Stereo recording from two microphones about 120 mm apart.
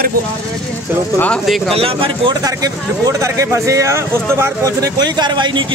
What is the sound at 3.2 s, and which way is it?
Speech, 25° right (ahead or behind).